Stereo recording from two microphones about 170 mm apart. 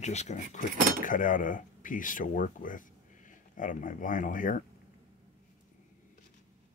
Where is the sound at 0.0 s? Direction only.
40° left (ahead or behind).